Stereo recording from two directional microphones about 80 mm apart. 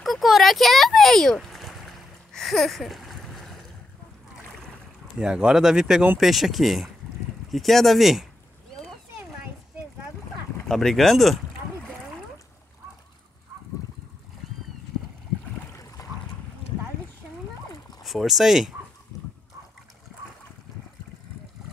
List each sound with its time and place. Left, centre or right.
0.0 s a sound: centre
5.2 s speech: centre
10.7 s speech: centre
15.7 s boat: left
18.0 s speech: centre